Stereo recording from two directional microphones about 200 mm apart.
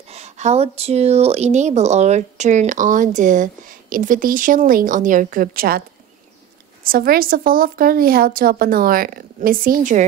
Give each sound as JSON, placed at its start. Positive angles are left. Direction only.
{"t": 0.1, "sound": "a woman's voice", "side_deg": -35}